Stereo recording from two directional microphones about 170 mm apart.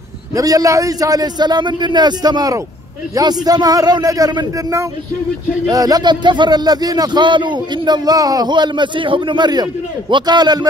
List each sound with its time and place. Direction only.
0.3 s a man's voice: 20° right (ahead or behind)